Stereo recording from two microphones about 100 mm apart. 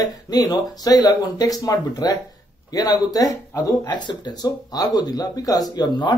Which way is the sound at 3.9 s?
45° left (ahead or behind).